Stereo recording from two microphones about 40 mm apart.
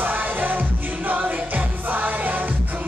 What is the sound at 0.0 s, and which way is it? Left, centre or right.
Music, right.